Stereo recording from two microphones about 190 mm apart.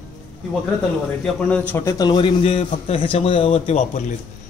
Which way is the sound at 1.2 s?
5° left (ahead or behind).